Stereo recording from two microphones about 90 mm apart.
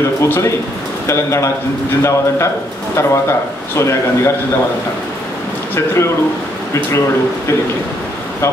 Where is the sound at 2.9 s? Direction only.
30° left (ahead or behind).